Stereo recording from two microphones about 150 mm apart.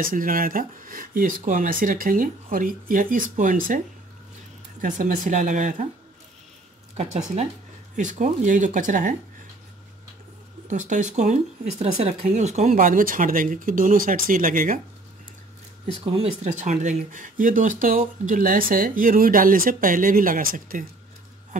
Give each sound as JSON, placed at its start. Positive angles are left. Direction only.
{"t": 0.0, "sound": "speech", "side_deg": -65}
{"t": 4.8, "sound": "speech", "side_deg": -60}
{"t": 7.9, "sound": "speech", "side_deg": -60}
{"t": 10.7, "sound": "speech", "side_deg": -55}
{"t": 16.1, "sound": "speech", "side_deg": -45}